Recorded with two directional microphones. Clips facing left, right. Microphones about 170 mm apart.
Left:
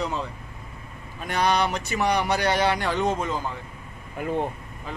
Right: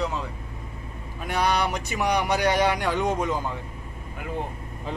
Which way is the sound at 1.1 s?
10° right (ahead or behind).